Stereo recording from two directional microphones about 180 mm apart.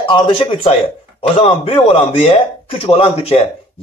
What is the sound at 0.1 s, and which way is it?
Speech, 30° left (ahead or behind).